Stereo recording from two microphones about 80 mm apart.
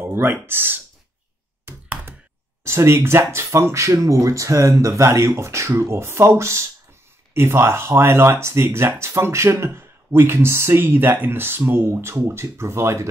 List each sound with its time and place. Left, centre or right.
0.0 s speech: right
1.7 s computer keyboard: right
2.6 s speech: right